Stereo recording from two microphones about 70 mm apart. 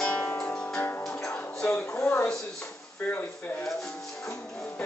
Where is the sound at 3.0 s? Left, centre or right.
Left.